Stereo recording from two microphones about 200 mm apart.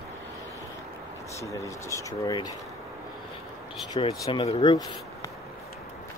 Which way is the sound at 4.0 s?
20° left (ahead or behind).